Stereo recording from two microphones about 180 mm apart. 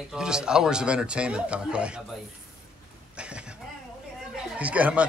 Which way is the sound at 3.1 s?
5° right (ahead or behind).